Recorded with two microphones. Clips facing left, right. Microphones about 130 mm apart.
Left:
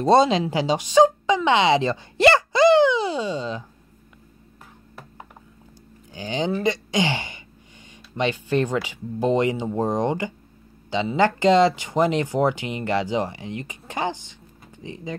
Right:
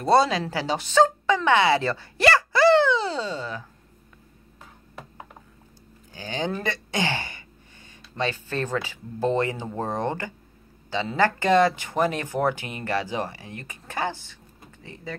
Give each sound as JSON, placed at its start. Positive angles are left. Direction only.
{"t": 0.0, "sound": "speech", "side_deg": 20}
{"t": 6.1, "sound": "speech", "side_deg": 20}